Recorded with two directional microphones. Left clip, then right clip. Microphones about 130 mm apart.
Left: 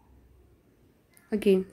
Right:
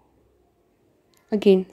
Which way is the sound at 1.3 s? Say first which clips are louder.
Right 6 dB; 25° right (ahead or behind).